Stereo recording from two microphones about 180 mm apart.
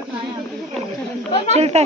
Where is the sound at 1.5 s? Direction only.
35° right (ahead or behind).